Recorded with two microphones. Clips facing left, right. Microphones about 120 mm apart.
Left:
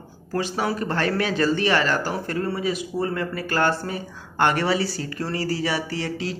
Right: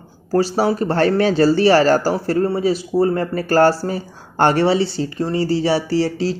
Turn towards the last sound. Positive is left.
turn(degrees=-30)  # may be behind; listen again after turning